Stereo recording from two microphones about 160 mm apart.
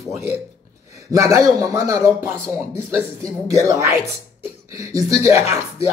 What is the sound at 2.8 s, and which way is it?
Speech, 5° left (ahead or behind).